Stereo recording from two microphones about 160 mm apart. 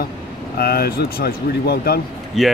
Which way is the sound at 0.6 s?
75° left (ahead or behind).